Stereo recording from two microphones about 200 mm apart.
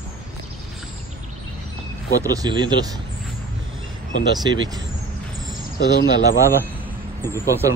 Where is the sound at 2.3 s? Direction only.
20° right (ahead or behind).